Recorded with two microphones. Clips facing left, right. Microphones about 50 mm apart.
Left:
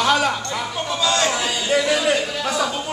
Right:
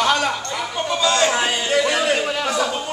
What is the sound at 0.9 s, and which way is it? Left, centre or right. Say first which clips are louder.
Speech: right 2 dB; centre.